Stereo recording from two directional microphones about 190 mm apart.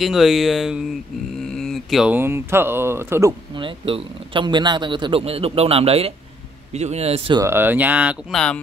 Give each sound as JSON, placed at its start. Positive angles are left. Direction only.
{"t": 0.0, "sound": "a man's voice", "side_deg": 0}
{"t": 7.3, "sound": "speech", "side_deg": -15}